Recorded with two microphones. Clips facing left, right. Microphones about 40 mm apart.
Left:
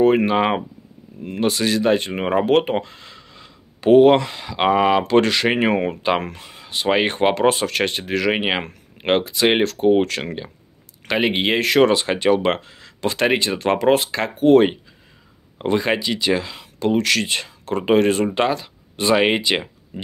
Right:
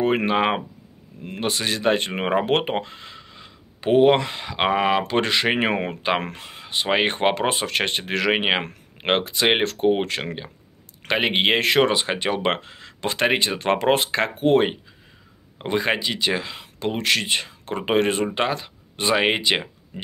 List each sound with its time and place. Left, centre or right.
0.0 s speech: right
2.7 s a sound: right
4.2 s speech: right
4.6 s speech: centre
6.2 s speech: right
6.6 s a sound: right
6.9 s speech: centre
8.3 s speech: centre
9.9 s speech: centre
11.1 s speech: right
11.8 s speech: centre
15.7 s speech: centre